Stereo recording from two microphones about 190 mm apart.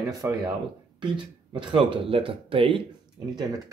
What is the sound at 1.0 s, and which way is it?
Speech, 25° right (ahead or behind).